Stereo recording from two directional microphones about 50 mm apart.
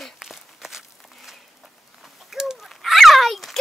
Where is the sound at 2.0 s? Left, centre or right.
Centre.